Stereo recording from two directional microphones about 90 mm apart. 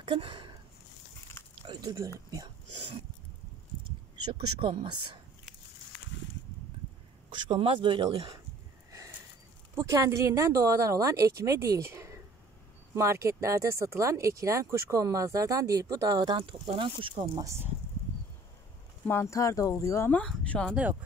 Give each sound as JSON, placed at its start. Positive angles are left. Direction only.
{"t": 0.0, "sound": "a sound", "side_deg": -70}
{"t": 1.8, "sound": "speech", "side_deg": -40}
{"t": 4.3, "sound": "speech", "side_deg": -80}
{"t": 7.2, "sound": "speech", "side_deg": -60}
{"t": 9.8, "sound": "speech", "side_deg": -35}
{"t": 16.3, "sound": "speech", "side_deg": -90}
{"t": 19.0, "sound": "speech", "side_deg": 30}
{"t": 20.5, "sound": "speech", "side_deg": 5}